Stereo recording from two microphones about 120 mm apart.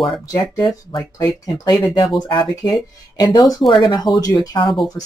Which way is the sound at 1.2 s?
30° left (ahead or behind).